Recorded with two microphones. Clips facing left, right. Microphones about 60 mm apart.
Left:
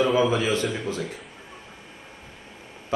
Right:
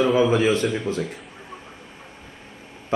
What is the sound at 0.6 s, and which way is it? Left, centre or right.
Speech, centre.